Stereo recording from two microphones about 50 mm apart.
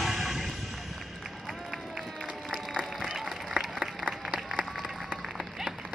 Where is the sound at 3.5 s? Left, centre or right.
Centre.